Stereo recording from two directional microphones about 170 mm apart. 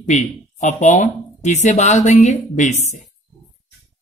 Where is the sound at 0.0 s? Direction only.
45° left (ahead or behind).